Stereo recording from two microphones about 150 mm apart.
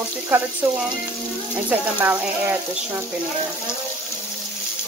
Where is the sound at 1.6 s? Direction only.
10° right (ahead or behind).